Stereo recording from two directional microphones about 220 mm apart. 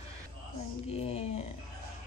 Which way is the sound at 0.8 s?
25° left (ahead or behind).